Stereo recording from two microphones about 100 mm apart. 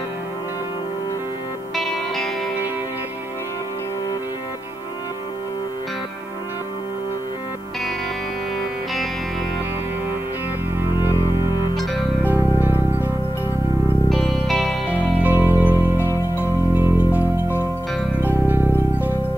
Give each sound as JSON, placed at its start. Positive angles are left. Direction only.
{"t": 12.6, "sound": "music", "side_deg": -20}
{"t": 14.4, "sound": "music", "side_deg": 5}
{"t": 14.9, "sound": "music", "side_deg": -20}
{"t": 15.7, "sound": "music", "side_deg": 25}
{"t": 16.3, "sound": "music", "side_deg": -20}
{"t": 18.3, "sound": "music", "side_deg": -20}